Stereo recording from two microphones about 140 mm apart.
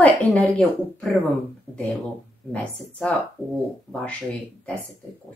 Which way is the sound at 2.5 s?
10° left (ahead or behind).